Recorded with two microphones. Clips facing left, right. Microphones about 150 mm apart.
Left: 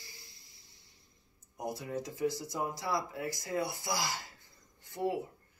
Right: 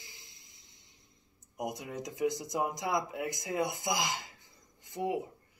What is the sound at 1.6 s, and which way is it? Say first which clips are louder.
Speech: even; 20° right (ahead or behind).